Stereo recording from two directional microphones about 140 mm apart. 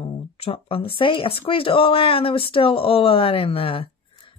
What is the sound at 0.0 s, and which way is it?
Speech, 45° left (ahead or behind).